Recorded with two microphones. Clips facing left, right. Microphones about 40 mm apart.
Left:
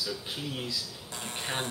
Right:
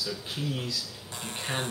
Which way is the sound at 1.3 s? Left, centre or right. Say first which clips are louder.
Right 1 dB; right.